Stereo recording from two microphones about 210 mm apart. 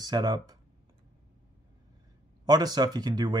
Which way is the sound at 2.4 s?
20° right (ahead or behind).